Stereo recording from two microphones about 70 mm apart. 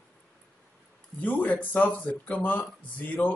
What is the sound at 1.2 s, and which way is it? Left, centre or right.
Speech, left.